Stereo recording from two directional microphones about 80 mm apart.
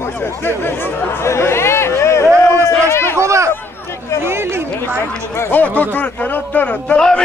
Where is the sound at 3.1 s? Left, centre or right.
Right.